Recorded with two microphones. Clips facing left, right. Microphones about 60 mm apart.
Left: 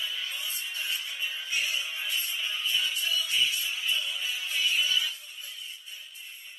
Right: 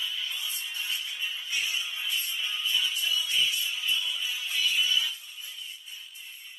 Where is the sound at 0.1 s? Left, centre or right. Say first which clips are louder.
Even; left.